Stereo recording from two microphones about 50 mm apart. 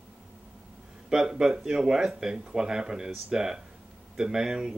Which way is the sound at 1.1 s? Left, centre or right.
Centre.